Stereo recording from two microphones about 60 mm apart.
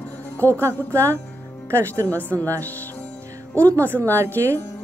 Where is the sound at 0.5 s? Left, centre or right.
Right.